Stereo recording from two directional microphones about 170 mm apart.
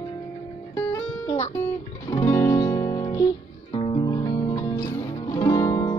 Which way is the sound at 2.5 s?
25° left (ahead or behind).